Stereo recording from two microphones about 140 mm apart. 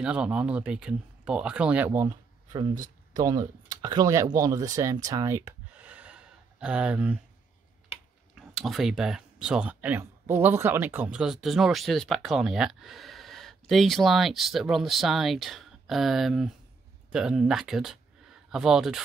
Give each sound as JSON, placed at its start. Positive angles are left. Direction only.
{"t": 0.0, "sound": "speech", "side_deg": -5}
{"t": 3.1, "sound": "speech", "side_deg": -25}
{"t": 4.7, "sound": "a sound", "side_deg": -25}
{"t": 8.4, "sound": "speech", "side_deg": 0}